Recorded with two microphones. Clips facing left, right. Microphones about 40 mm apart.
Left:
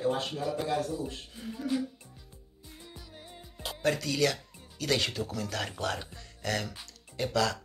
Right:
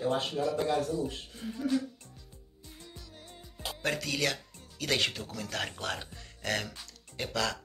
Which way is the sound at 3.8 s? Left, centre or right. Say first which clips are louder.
Left 3 dB; right.